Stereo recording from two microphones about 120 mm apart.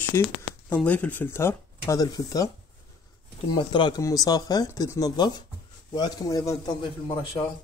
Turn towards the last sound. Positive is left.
turn(degrees=40)  # may be behind; listen again after turning